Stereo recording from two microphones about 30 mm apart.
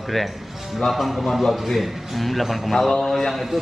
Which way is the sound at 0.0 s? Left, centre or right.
Centre.